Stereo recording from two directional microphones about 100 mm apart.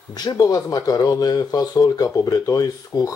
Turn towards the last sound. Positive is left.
turn(degrees=35)  # may be behind; listen again after turning